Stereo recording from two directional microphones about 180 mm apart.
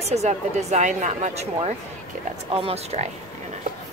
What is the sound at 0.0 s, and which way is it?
Speech, 35° right (ahead or behind).